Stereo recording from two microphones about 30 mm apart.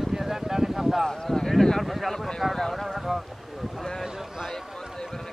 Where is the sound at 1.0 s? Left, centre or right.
Centre.